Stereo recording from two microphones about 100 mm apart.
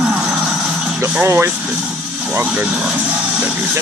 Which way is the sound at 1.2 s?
20° right (ahead or behind).